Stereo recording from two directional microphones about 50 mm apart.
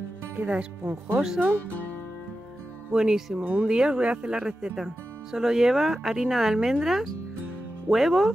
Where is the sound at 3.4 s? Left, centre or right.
Right.